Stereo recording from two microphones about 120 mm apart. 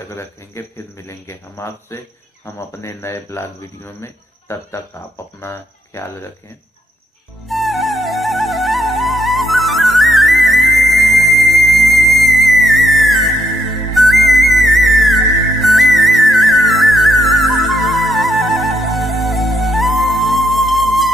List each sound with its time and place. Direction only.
0.6 s a man's voice: 25° left (ahead or behind)
7.4 s music: centre (ahead or behind)